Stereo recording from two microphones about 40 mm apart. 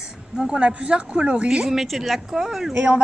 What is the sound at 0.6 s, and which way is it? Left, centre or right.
Speech, right.